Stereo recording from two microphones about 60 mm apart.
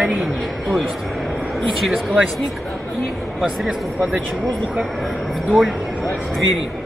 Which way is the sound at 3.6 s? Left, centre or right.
Centre.